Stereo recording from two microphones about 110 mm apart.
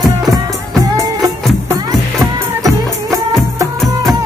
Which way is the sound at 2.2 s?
30° right (ahead or behind).